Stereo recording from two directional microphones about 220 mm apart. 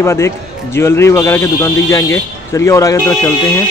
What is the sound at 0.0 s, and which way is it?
A man's voice, 10° left (ahead or behind).